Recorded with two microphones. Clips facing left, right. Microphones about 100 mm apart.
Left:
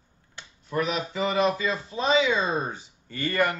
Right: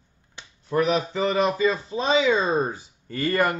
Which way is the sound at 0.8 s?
35° right (ahead or behind).